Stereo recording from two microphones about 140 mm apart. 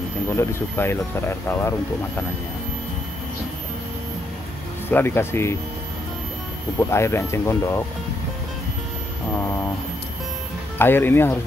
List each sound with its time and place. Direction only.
0.3 s speech: 20° left (ahead or behind)
4.8 s speech: 15° left (ahead or behind)
6.8 s speech: 20° left (ahead or behind)
9.3 s speech: 20° left (ahead or behind)
10.8 s speech: 15° left (ahead or behind)